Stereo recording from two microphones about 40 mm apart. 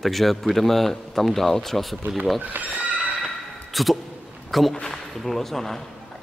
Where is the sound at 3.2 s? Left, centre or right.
Centre.